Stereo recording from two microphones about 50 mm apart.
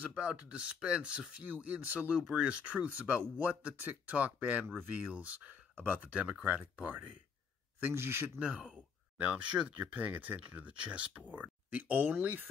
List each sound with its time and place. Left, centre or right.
0.1 s speech: right
7.9 s speech: right
8.4 s speech: right